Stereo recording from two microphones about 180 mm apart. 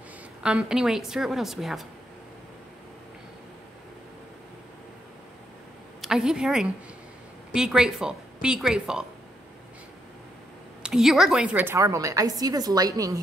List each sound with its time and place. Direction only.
0.4 s a woman's voice: 5° right (ahead or behind)
5.9 s a woman's voice: 5° right (ahead or behind)
10.8 s a woman's voice: 5° right (ahead or behind); by 13.2 s 20° right (ahead or behind)